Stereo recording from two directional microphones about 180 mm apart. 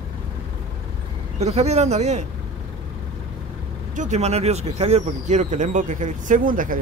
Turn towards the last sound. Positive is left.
turn(degrees=-50)  # may be behind; listen again after turning